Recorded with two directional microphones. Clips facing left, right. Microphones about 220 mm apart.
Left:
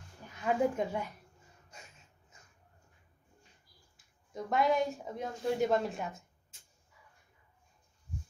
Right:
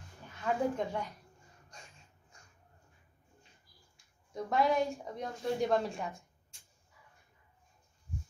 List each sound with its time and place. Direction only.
0.4 s speech: 15° left (ahead or behind)
3.9 s speech: centre (ahead or behind)